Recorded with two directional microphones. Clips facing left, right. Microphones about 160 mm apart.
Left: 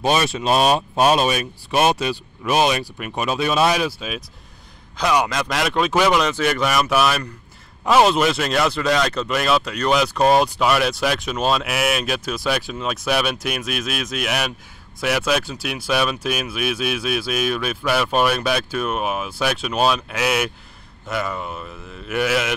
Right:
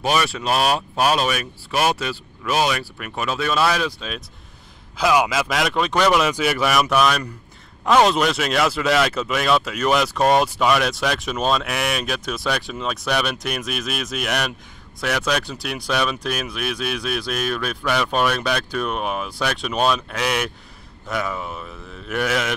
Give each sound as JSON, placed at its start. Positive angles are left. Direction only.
{"t": 0.0, "sound": "speech", "side_deg": 25}
{"t": 4.9, "sound": "speech", "side_deg": -5}